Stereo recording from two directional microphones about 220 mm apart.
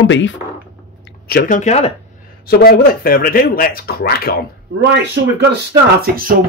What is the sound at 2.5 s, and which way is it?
Speech, 45° left (ahead or behind).